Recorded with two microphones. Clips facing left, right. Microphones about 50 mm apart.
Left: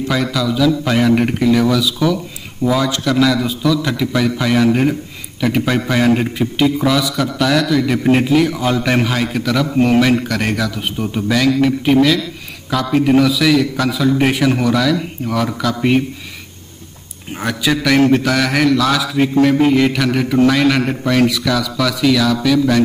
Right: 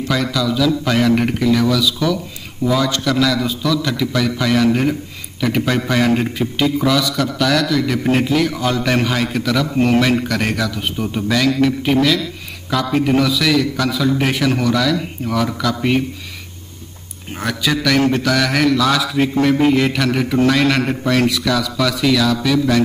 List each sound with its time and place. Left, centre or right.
0.1 s a man's voice: centre
17.4 s a man's voice: centre